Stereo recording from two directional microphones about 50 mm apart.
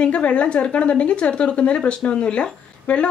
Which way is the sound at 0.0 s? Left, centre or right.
Left.